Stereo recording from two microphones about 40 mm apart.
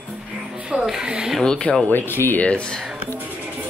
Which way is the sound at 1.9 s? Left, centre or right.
Left.